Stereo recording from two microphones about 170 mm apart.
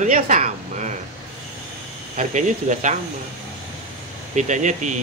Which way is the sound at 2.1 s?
45° right (ahead or behind).